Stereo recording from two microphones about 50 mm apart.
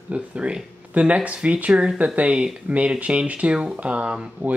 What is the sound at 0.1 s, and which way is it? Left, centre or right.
Speech, right.